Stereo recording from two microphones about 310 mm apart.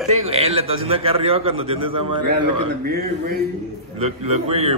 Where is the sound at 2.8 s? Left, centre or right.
Right.